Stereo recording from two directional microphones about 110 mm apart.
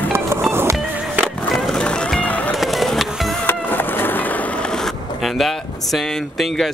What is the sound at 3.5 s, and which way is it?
Skateboard, 15° left (ahead or behind).